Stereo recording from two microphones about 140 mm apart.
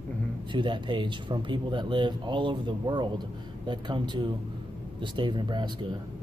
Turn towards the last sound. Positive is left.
turn(degrees=-35)  # may be behind; listen again after turning